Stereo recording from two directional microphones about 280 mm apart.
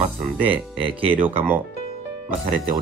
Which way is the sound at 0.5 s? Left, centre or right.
Centre.